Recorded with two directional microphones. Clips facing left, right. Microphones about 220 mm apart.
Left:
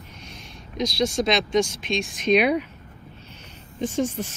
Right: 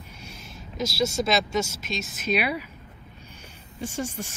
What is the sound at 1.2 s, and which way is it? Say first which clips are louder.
Speech: left 4 dB; 90° left.